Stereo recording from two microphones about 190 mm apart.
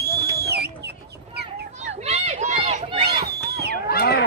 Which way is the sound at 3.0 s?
55° right (ahead or behind).